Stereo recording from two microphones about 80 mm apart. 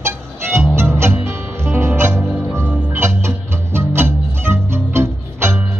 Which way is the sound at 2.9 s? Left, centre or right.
Right.